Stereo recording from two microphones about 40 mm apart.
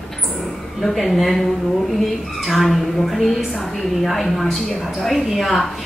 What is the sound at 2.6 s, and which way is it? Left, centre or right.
A woman's voice, centre.